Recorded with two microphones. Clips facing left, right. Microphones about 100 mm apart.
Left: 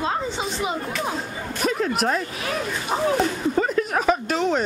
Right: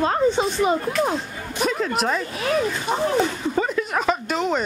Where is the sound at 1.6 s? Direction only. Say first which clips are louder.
Even; centre (ahead or behind).